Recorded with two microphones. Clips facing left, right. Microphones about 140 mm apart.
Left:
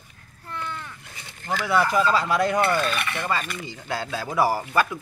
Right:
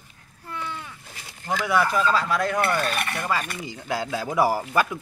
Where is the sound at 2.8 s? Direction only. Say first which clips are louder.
Even; 45° right (ahead or behind).